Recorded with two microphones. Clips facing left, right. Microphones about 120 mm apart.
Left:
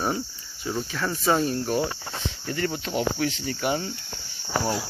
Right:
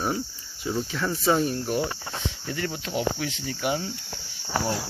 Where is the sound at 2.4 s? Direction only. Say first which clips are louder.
Left 5 dB; 5° right (ahead or behind).